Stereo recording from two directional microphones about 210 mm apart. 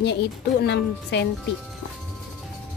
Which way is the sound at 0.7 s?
55° left (ahead or behind).